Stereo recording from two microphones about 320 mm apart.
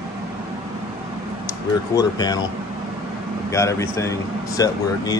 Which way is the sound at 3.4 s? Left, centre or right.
Centre.